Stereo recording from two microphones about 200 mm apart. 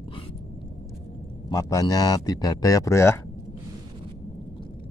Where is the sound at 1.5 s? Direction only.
20° left (ahead or behind).